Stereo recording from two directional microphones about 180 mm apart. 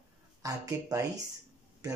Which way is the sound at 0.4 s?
20° right (ahead or behind).